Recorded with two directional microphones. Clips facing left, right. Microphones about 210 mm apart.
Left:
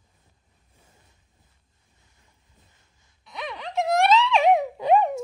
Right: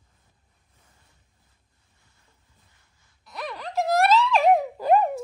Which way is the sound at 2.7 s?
20° left (ahead or behind).